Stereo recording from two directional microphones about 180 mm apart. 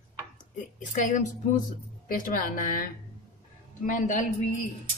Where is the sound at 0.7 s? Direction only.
45° left (ahead or behind).